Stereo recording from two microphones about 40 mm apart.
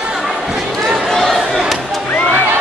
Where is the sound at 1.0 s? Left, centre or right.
Centre.